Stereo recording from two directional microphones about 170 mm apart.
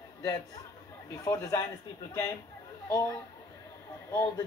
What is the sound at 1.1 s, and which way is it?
Speech, 20° left (ahead or behind).